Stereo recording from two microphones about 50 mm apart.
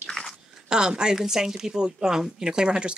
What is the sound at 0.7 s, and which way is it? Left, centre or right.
Speech, centre.